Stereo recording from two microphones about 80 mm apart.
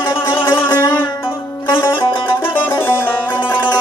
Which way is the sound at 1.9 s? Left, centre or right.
Left.